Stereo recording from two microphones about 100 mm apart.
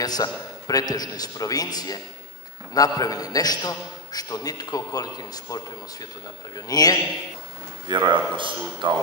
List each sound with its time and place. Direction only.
0.0 s a man's voice: 40° left (ahead or behind)
7.9 s a man's voice: 50° right (ahead or behind)